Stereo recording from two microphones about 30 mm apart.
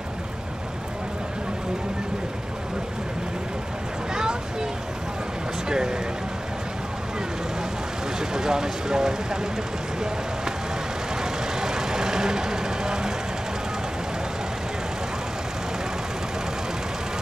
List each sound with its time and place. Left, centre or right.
4.1 s a sound: right
5.7 s speech: right
8.2 s vehicle: centre
11.1 s vehicle: centre